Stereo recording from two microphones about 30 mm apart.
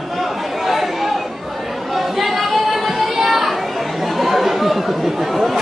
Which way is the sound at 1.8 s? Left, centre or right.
Centre.